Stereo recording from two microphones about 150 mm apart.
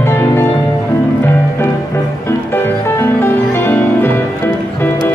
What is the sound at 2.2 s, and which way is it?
Music, 15° left (ahead or behind).